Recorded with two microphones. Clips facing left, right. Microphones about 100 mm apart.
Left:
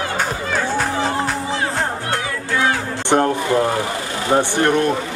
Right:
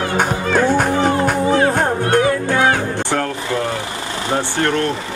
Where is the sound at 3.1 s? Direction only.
20° left (ahead or behind).